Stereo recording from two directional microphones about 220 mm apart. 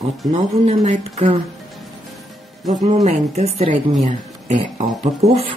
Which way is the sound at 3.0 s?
30° right (ahead or behind).